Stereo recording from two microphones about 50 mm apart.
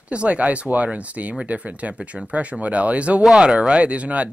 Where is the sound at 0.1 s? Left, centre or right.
Right.